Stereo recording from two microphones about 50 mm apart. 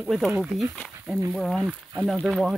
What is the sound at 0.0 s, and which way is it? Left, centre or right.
Speech, centre.